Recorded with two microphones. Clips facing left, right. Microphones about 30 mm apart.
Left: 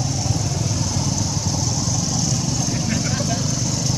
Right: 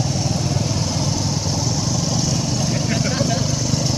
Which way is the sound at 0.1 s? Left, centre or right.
Right.